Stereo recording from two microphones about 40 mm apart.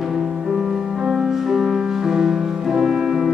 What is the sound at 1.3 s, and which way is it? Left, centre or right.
Music, centre.